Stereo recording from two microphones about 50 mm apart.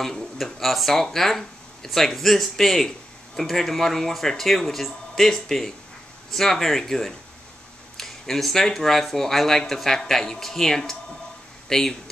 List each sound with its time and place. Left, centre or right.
0.0 s speech: centre